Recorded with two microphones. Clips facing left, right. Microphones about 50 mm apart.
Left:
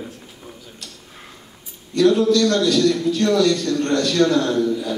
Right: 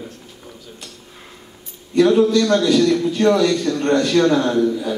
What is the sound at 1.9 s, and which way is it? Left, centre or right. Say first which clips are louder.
A man's voice: right 2 dB; centre.